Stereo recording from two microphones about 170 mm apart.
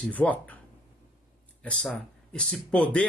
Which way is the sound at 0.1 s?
10° left (ahead or behind).